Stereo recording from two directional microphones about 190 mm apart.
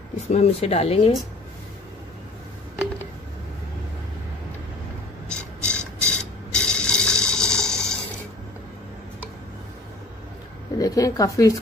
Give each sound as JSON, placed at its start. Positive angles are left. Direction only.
{"t": 0.3, "sound": "speech", "side_deg": 35}
{"t": 5.3, "sound": "mechanisms", "side_deg": 5}
{"t": 10.8, "sound": "speech", "side_deg": 20}